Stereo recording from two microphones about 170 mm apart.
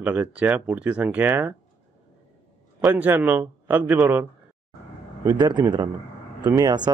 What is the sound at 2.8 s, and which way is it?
Speech, 10° right (ahead or behind).